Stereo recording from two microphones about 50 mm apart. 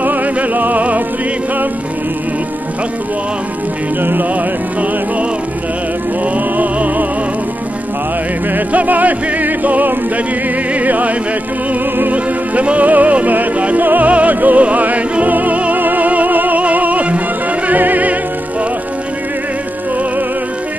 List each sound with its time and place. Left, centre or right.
0.0 s music: right
4.0 s music: right
6.2 s music: right
8.5 s music: right